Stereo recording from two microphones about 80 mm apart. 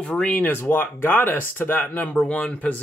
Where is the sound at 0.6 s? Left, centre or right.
Left.